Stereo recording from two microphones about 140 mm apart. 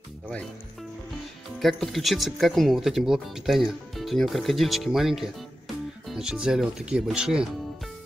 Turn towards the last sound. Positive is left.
turn(degrees=-5)  # may be behind; listen again after turning